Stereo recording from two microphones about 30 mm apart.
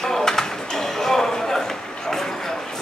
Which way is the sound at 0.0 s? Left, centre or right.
Centre.